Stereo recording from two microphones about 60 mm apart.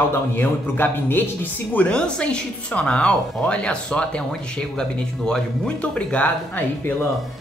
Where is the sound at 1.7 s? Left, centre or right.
Left.